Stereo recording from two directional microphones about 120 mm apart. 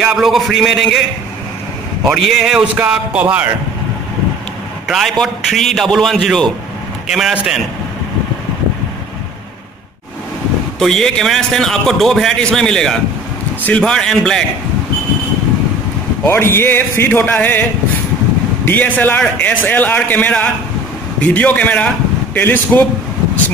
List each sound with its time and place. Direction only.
0.0 s a man's voice: centre (ahead or behind)
2.0 s a man's voice: centre (ahead or behind)
4.8 s a man's voice: centre (ahead or behind)
10.8 s a man's voice: 5° left (ahead or behind)
16.3 s a man's voice: 20° left (ahead or behind)
18.7 s a man's voice: 15° left (ahead or behind)